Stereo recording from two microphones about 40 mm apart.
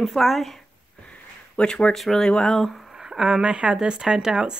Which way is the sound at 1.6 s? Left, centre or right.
Left.